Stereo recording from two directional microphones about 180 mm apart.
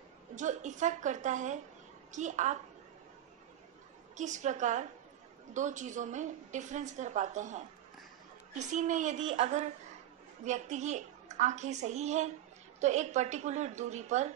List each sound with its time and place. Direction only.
0.4 s a woman's voice: 40° right (ahead or behind)
4.2 s a woman's voice: 40° right (ahead or behind)